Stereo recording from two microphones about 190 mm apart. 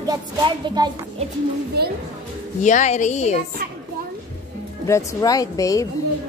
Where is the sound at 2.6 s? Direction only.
40° left (ahead or behind).